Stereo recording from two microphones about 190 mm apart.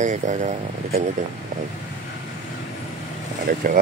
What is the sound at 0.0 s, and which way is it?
Speech, 40° right (ahead or behind).